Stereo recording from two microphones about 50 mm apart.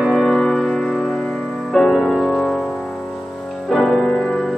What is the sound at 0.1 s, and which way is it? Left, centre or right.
Music, centre.